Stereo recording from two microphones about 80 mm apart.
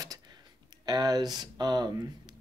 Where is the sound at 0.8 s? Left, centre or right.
Right.